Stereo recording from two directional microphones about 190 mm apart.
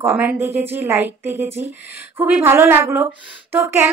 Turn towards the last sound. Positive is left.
turn(degrees=-15)  # may be behind; listen again after turning